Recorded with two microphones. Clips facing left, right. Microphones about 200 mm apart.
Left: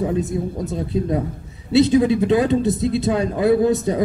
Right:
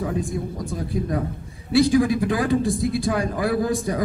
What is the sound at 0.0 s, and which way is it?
Speech, 25° left (ahead or behind).